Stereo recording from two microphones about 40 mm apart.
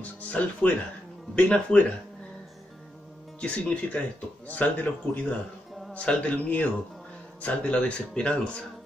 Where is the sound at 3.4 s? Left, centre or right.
Left.